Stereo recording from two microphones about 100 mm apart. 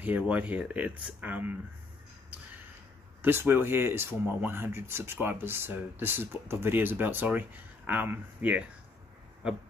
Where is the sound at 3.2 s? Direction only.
20° right (ahead or behind).